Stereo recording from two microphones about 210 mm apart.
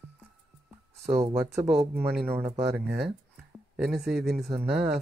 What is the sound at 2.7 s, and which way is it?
Speech, 5° right (ahead or behind).